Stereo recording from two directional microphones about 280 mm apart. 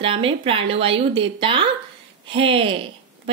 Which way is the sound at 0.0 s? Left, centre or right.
Centre.